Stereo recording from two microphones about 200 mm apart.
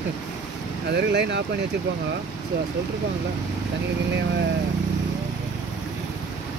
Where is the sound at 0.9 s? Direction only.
55° right (ahead or behind).